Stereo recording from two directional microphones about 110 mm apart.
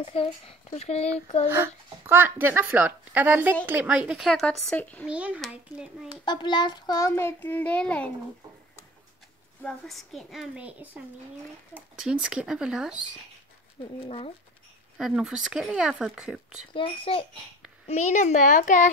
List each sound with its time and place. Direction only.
0.0 s speech: 60° left (ahead or behind)
1.5 s speech: 20° right (ahead or behind)
4.3 s speech: 5° left (ahead or behind)
5.0 s speech: 10° right (ahead or behind)
6.2 s child singing: 45° left (ahead or behind)
7.1 s speech: 20° left (ahead or behind)
9.6 s speech: 5° left (ahead or behind); by 11.0 s 15° right (ahead or behind)
12.0 s speech: 10° right (ahead or behind)
14.0 s speech: 65° left (ahead or behind)
15.0 s speech: 5° right (ahead or behind)
16.7 s child singing: 50° left (ahead or behind)
17.8 s a child's voice: 90° left